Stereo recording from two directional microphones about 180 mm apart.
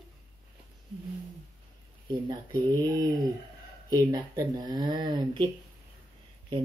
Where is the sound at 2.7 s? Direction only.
20° right (ahead or behind).